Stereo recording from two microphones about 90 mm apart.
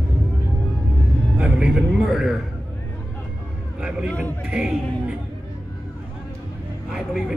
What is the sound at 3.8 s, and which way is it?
Music, 10° right (ahead or behind).